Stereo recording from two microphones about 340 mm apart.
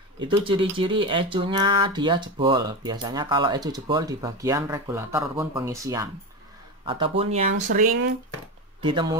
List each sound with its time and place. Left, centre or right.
0.4 s speech: centre